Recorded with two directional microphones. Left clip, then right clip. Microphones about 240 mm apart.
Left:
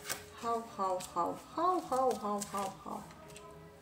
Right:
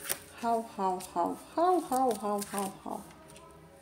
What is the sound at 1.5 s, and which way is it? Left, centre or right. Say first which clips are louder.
Speech: right 5 dB; right.